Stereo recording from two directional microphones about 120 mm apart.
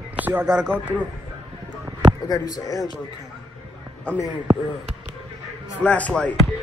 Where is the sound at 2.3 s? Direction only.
30° left (ahead or behind).